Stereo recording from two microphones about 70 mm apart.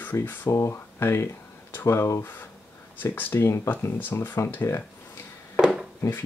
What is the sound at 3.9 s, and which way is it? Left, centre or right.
Speech, left.